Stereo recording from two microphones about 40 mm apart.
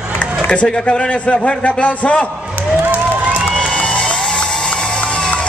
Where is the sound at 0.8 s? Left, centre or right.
Left.